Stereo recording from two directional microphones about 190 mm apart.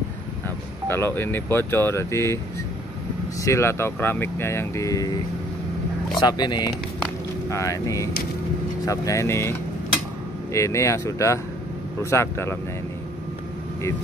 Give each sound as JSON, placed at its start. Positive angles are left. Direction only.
{"t": 0.8, "sound": "speech", "side_deg": 10}
{"t": 3.4, "sound": "speech", "side_deg": 15}
{"t": 6.1, "sound": "speech", "side_deg": 20}